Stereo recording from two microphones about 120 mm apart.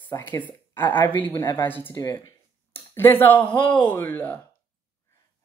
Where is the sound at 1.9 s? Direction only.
30° left (ahead or behind).